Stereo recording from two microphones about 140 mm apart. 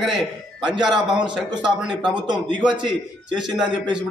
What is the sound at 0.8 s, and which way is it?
Speech, 30° right (ahead or behind).